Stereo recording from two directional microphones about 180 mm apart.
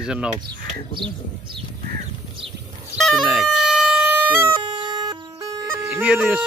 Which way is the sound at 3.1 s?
Centre (ahead or behind).